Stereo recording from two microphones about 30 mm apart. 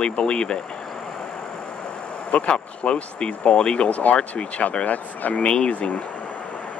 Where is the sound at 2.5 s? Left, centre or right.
Left.